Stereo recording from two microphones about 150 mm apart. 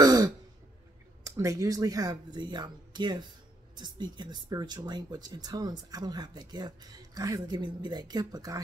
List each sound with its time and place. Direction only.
0.0 s throat clearing: 25° right (ahead or behind)
1.2 s speech: 20° right (ahead or behind)